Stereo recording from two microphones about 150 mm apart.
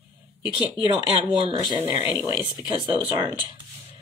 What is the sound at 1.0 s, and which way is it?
Speech, 40° right (ahead or behind).